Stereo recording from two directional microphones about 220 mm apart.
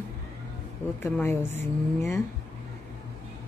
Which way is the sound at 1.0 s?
10° left (ahead or behind).